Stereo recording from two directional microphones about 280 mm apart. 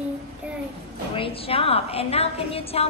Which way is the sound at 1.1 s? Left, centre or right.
Centre.